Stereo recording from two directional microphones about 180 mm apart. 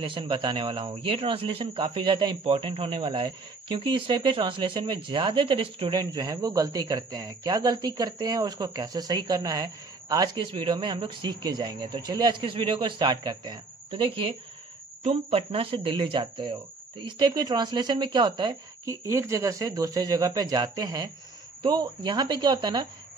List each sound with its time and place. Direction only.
0.0 s a man's voice: 25° right (ahead or behind)